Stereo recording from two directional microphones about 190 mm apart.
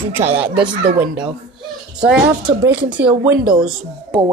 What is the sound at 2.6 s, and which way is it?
Speech, 70° right (ahead or behind).